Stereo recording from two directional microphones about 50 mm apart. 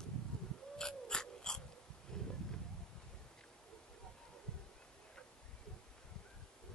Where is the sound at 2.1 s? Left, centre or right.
Centre.